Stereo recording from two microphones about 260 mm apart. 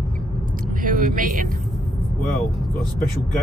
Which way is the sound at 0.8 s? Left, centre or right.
Right.